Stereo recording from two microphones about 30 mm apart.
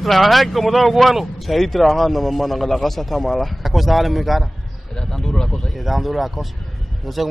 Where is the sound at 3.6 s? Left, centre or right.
Centre.